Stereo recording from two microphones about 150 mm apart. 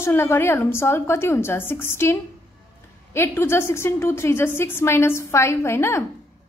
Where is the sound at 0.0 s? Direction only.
15° left (ahead or behind).